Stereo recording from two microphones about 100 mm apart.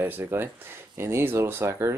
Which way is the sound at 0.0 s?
20° right (ahead or behind).